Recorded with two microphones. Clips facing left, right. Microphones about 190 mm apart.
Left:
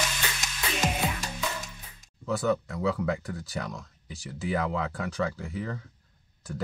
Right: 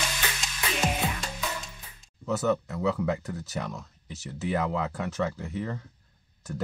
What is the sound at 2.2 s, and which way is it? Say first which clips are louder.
Speech: right 1 dB; centre (ahead or behind).